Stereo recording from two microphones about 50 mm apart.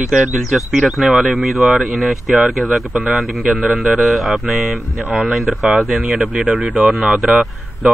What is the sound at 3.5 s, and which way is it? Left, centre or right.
Speech, right.